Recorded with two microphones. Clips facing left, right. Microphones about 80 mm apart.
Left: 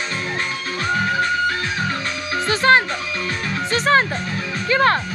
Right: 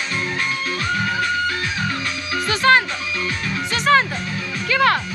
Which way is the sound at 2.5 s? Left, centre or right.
Left.